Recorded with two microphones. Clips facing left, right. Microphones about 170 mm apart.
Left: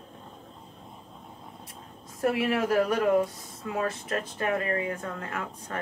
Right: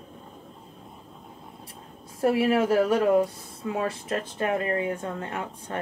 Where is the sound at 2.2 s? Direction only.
30° right (ahead or behind).